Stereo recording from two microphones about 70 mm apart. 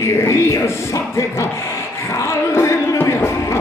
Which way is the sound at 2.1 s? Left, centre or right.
Left.